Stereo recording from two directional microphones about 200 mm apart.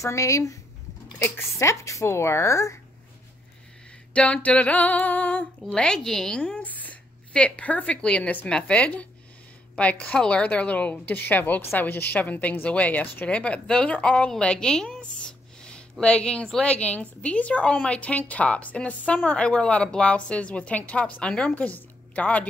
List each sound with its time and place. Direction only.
0.0 s a woman's voice: 15° left (ahead or behind)
4.1 s a woman's voice: 5° left (ahead or behind)